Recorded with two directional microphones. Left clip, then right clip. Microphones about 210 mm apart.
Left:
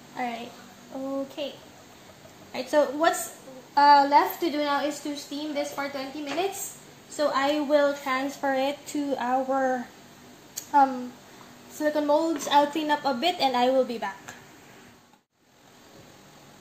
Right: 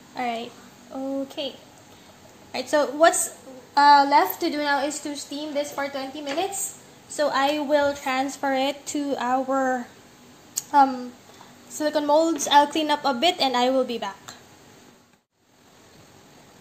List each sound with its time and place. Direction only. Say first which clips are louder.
0.1 s a child's voice: right 4 dB; 50° right (ahead or behind)
7.2 s a woman's voice: right 2 dB; 55° right (ahead or behind); by 9.8 s 30° right (ahead or behind)
10.5 s a sound: right 3 dB; 40° right (ahead or behind)
11.8 s a woman's voice: right 3 dB; 50° right (ahead or behind); by 14.3 s 30° right (ahead or behind)